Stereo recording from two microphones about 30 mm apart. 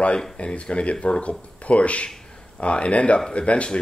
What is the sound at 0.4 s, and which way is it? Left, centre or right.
Speech, left.